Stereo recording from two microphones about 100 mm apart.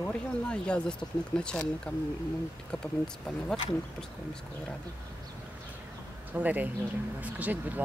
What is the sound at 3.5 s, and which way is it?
Speech, 5° left (ahead or behind).